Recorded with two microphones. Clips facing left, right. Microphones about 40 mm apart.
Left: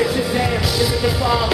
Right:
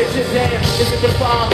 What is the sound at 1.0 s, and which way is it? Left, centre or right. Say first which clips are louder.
Music: right 3 dB; centre.